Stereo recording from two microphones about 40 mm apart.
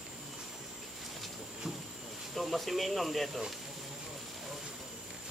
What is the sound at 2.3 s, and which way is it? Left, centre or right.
Speech, centre.